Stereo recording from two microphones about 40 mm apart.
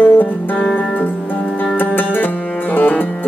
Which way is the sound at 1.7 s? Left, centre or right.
Left.